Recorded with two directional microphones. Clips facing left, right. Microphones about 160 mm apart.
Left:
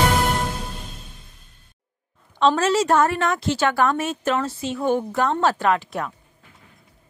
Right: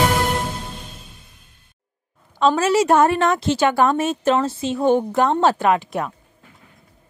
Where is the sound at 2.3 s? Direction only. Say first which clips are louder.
Right 2 dB; 5° right (ahead or behind).